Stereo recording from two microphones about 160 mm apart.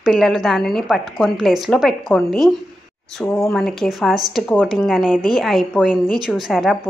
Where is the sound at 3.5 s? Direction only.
5° left (ahead or behind).